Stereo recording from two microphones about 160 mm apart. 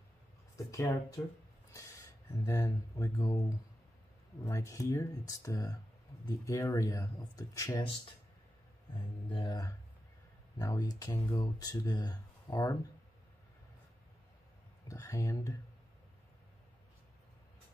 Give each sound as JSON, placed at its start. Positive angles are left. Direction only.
{"t": 0.7, "sound": "speech", "side_deg": 20}
{"t": 9.3, "sound": "speech", "side_deg": 25}
{"t": 14.9, "sound": "speech", "side_deg": 20}